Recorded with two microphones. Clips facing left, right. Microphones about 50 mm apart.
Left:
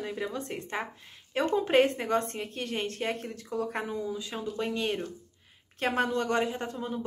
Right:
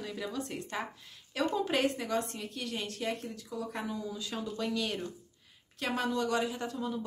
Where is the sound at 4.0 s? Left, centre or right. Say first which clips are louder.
Left 4 dB; left.